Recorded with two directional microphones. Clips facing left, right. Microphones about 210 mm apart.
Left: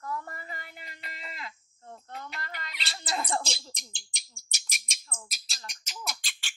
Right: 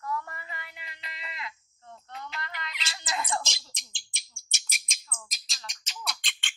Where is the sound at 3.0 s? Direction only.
30° left (ahead or behind).